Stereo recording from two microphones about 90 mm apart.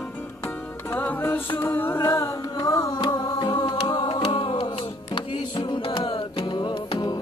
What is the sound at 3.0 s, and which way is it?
Music, 55° left (ahead or behind).